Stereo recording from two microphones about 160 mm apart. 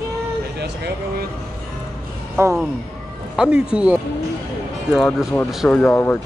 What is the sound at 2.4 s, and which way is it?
Speech, 15° right (ahead or behind).